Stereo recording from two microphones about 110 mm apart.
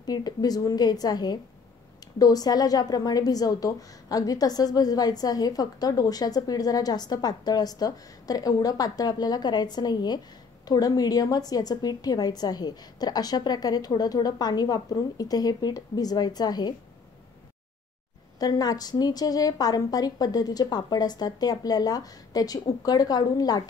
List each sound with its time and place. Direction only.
0.0 s a woman's voice: 35° left (ahead or behind)
18.4 s a woman's voice: 35° left (ahead or behind)